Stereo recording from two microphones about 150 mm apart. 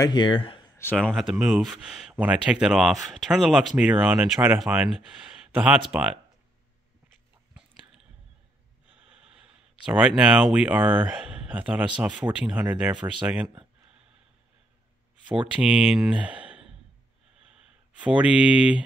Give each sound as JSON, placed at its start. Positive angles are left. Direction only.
{"t": 0.0, "sound": "speech", "side_deg": 30}
{"t": 0.9, "sound": "speech", "side_deg": 0}
{"t": 9.8, "sound": "speech", "side_deg": -5}
{"t": 15.2, "sound": "speech", "side_deg": -10}
{"t": 17.9, "sound": "speech", "side_deg": -10}